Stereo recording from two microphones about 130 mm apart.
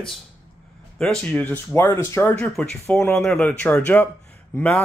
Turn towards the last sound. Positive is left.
turn(degrees=10)  # may be behind; listen again after turning